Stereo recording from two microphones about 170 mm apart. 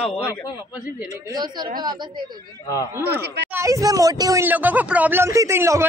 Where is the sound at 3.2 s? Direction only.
75° right (ahead or behind).